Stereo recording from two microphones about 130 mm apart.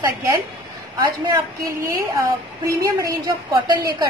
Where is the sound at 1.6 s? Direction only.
25° right (ahead or behind).